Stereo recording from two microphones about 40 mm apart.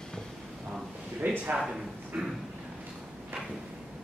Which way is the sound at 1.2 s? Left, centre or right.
Right.